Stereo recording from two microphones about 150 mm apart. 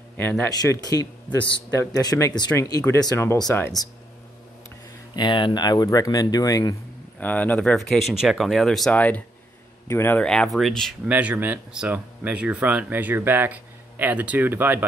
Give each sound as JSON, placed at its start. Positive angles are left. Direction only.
{"t": 0.2, "sound": "speech", "side_deg": 15}
{"t": 0.5, "sound": "speech", "side_deg": 25}
{"t": 5.1, "sound": "speech", "side_deg": 30}
{"t": 7.2, "sound": "speech", "side_deg": 10}
{"t": 11.1, "sound": "speech", "side_deg": -10}